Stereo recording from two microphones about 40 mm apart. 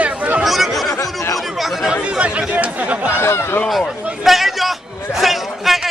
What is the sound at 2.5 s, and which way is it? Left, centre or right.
Speech, right.